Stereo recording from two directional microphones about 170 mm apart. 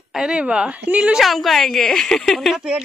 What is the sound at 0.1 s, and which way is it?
A woman's voice, 5° right (ahead or behind).